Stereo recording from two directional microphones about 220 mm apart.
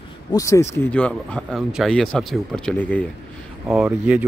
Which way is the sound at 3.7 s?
5° right (ahead or behind).